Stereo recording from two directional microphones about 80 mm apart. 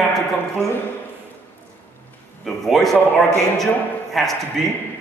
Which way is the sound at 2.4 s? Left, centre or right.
Centre.